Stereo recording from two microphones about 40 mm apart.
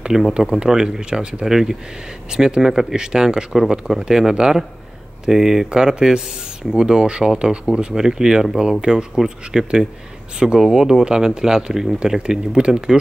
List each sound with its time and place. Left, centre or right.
0.3 s speech: right